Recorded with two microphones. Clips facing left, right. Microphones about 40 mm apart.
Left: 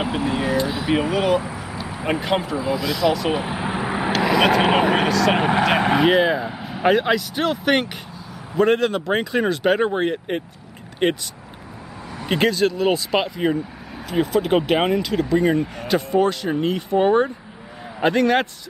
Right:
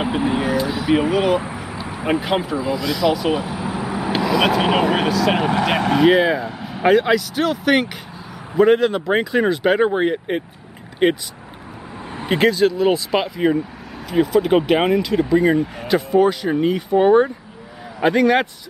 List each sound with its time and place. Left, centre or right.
0.0 s speech: centre
0.4 s speech: centre
1.0 s speech: centre
1.8 s a sound: right
2.0 s speech: centre
3.3 s vehicle: left
4.3 s speech: centre
4.6 s speech: centre
4.9 s speech: centre
5.4 s speech: centre
6.0 s speech: centre
12.3 s speech: centre